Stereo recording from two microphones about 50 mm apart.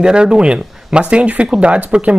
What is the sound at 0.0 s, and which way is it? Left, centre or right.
Speech, centre.